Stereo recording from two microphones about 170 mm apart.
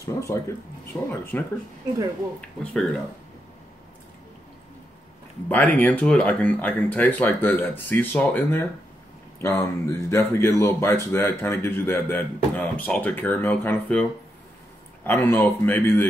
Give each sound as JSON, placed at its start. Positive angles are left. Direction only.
{"t": 0.0, "sound": "speech", "side_deg": 15}
{"t": 1.3, "sound": "speech", "side_deg": 10}
{"t": 2.6, "sound": "speech", "side_deg": 5}
{"t": 5.5, "sound": "speech", "side_deg": 10}
{"t": 15.0, "sound": "speech", "side_deg": 10}